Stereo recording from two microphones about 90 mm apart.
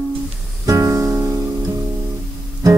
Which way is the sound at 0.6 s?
35° right (ahead or behind).